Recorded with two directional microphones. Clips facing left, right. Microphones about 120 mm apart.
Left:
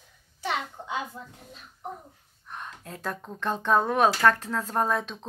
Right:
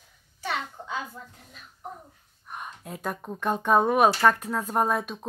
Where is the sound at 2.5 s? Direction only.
10° right (ahead or behind).